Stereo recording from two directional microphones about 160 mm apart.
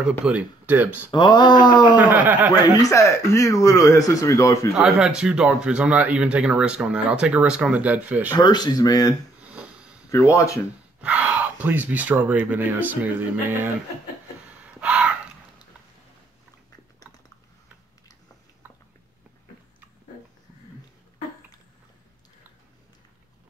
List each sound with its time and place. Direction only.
0.2 s speech: 10° right (ahead or behind)
1.1 s speech: 30° left (ahead or behind)
2.0 s speech: 10° right (ahead or behind)
2.8 s speech: 20° left (ahead or behind)
4.7 s speech: 5° right (ahead or behind)
8.3 s speech: 25° left (ahead or behind)
9.5 s sniff: 5° right (ahead or behind)
10.0 s speech: 20° left (ahead or behind)
11.0 s speech: 10° right (ahead or behind)
14.7 s gasp: 10° right (ahead or behind)